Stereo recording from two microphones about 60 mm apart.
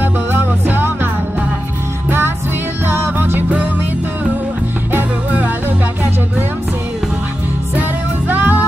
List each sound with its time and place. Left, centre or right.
0.0 s music: right
2.0 s music: right
4.9 s music: right
8.3 s music: right